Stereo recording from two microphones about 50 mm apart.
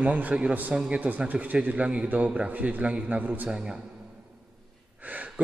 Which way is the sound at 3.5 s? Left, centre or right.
Centre.